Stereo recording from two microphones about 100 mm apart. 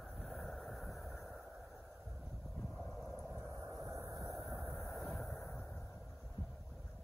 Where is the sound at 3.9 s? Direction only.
30° right (ahead or behind).